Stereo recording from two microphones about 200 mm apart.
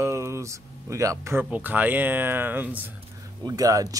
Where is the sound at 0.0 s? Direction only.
15° right (ahead or behind).